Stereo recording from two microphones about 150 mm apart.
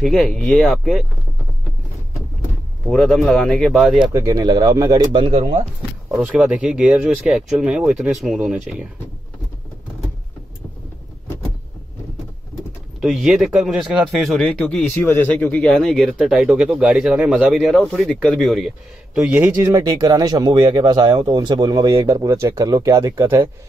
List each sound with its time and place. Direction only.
0.0 s speech: 5° left (ahead or behind)
2.9 s speech: centre (ahead or behind)
4.1 s speech: 20° right (ahead or behind); by 5.6 s 40° right (ahead or behind)
6.1 s speech: 10° right (ahead or behind)
13.0 s speech: 5° right (ahead or behind)